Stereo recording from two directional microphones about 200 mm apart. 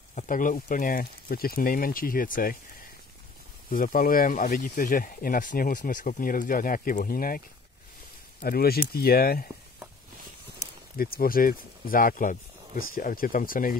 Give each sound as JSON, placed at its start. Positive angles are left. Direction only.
{"t": 0.1, "sound": "speech", "side_deg": 40}
{"t": 3.7, "sound": "speech", "side_deg": 45}
{"t": 11.0, "sound": "speech", "side_deg": 45}